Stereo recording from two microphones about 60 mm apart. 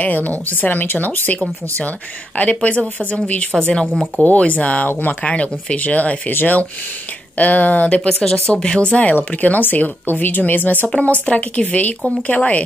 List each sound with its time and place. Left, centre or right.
0.0 s speech: left
3.8 s speech: centre
4.2 s speech: left